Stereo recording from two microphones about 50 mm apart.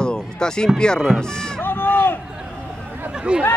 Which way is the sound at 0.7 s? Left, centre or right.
Centre.